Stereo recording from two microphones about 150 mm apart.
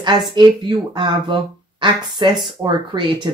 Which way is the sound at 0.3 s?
30° right (ahead or behind).